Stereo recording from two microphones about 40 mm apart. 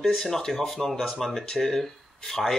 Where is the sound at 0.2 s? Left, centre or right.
Centre.